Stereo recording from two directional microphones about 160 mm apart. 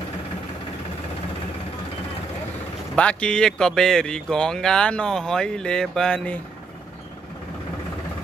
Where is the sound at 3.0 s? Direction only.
5° left (ahead or behind).